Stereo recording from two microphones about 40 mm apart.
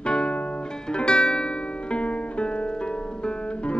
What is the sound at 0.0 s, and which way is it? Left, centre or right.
Music, left.